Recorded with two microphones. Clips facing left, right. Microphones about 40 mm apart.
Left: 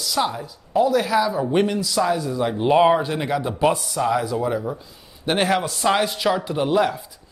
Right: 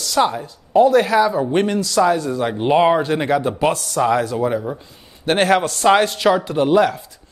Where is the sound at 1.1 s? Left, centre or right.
Centre.